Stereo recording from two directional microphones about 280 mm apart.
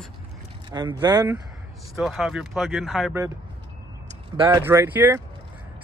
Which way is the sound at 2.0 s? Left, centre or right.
Centre.